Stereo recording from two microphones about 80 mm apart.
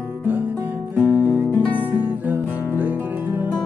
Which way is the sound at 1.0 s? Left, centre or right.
Right.